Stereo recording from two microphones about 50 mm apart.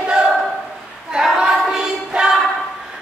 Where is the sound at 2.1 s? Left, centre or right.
Centre.